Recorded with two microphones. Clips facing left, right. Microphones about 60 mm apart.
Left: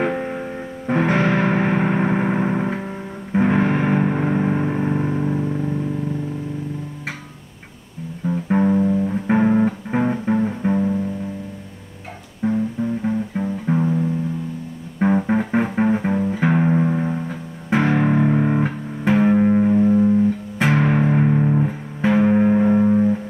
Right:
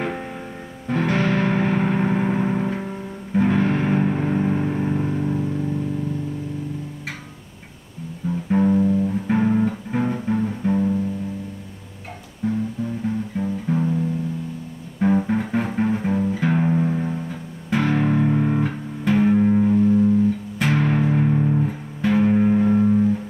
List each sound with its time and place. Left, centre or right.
0.0 s music: centre
8.3 s music: left
9.3 s music: left
12.4 s music: left